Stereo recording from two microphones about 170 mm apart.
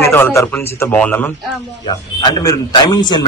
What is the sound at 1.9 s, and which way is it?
A man's voice, 25° left (ahead or behind).